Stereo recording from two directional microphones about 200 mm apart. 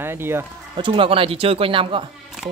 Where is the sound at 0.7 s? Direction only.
25° right (ahead or behind).